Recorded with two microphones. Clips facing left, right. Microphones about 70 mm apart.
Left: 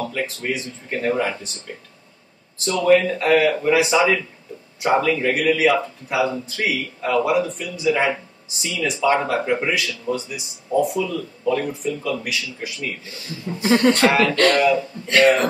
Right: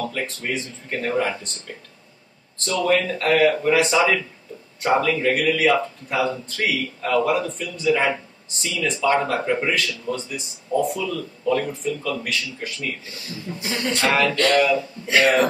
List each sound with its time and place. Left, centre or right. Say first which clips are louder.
0.1 s a man's voice: left 2 dB; centre
2.9 s a man's voice: left 5 dB; centre
13.6 s speech: left 10 dB; left
14.5 s a man's voice: left 1 dB; centre